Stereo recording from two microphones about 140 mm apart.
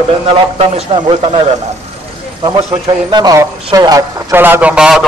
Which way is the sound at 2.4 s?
35° right (ahead or behind).